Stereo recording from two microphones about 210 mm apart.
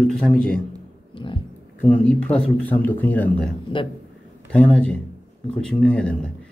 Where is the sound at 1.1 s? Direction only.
25° left (ahead or behind).